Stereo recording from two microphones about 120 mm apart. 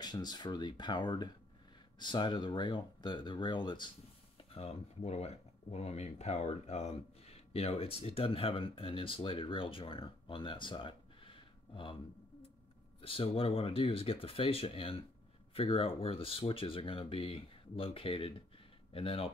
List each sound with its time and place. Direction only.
0.0 s speech: 35° left (ahead or behind)
4.4 s speech: 55° left (ahead or behind)